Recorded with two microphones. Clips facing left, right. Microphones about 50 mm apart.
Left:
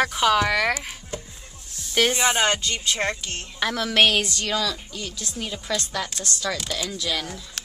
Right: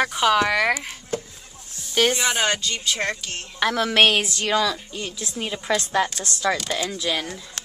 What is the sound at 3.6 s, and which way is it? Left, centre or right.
A woman's voice, centre.